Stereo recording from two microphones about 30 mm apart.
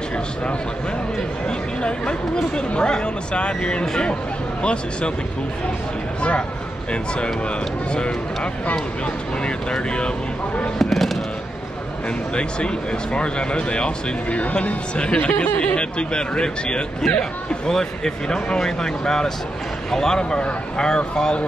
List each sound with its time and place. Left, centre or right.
1.8 s speech: left
7.4 s speech: left
10.8 s speech: centre
12.4 s speech: left
17.0 s speech: centre